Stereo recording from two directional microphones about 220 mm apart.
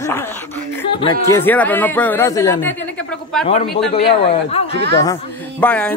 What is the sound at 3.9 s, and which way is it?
Speech, 25° left (ahead or behind).